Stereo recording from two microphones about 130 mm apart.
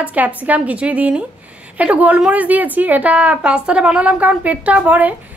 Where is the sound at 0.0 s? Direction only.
10° right (ahead or behind).